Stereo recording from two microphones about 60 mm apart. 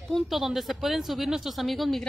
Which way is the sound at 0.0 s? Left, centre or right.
Centre.